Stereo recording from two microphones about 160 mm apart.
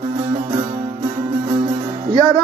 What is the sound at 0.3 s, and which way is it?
Music, 25° right (ahead or behind).